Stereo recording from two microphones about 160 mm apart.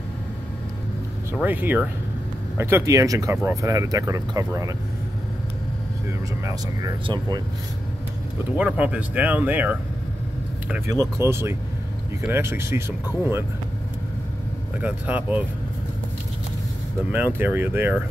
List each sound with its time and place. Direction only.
1.3 s speech: 10° right (ahead or behind)
7.1 s speech: 25° right (ahead or behind)
8.5 s speech: 5° right (ahead or behind)
10.9 s speech: 20° right (ahead or behind)
14.8 s speech: 10° right (ahead or behind)
17.1 s speech: 10° right (ahead or behind)